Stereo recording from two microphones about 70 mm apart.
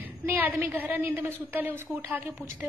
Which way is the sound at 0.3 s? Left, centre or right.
Right.